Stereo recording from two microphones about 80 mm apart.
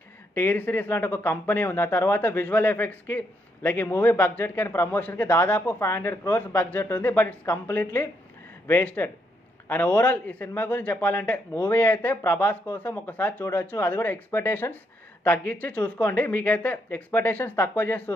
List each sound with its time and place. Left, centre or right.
0.3 s speech: left